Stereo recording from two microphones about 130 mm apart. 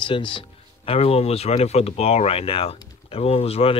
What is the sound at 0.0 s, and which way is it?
Speech, 40° left (ahead or behind).